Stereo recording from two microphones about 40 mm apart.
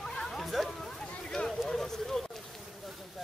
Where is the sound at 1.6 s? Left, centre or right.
Centre.